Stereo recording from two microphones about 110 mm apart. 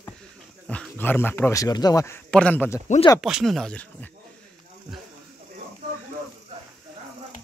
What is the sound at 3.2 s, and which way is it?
Speech, 5° right (ahead or behind).